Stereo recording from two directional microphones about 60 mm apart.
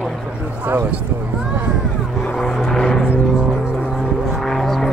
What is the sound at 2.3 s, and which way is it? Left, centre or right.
Vehicle, centre.